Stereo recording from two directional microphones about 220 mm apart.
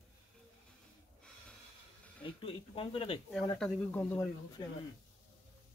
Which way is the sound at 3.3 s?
Centre (ahead or behind).